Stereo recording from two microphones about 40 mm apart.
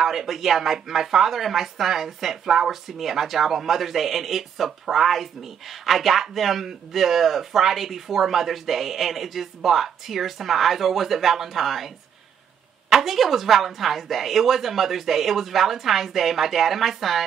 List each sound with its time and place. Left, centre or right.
0.0 s speech: centre
12.9 s speech: centre